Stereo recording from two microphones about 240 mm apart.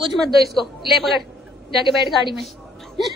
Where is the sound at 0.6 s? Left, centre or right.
Centre.